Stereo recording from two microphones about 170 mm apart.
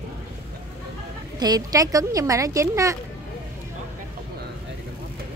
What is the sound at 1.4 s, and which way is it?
A woman's voice, 20° right (ahead or behind).